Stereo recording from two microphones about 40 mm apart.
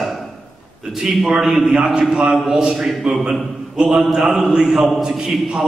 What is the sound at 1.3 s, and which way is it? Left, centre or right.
Speech, centre.